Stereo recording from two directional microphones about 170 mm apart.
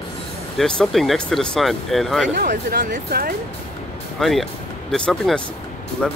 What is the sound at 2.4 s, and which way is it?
Speech, 55° right (ahead or behind).